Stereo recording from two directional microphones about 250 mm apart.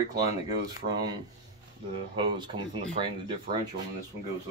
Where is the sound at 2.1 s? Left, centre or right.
Centre.